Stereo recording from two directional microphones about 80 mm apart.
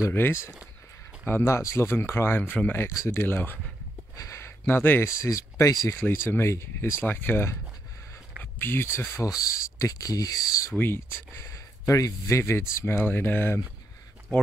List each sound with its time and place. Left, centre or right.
0.1 s speech: left
2.8 s speech: left
4.2 s a sound: left
5.1 s speech: left
5.9 s speech: left
8.5 s speech: left
9.8 s speech: left
10.8 s speech: left
11.4 s speech: left